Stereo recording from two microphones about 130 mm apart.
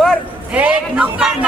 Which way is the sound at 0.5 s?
10° right (ahead or behind).